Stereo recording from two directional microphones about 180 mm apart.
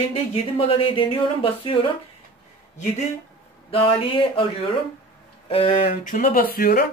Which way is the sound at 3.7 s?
30° left (ahead or behind).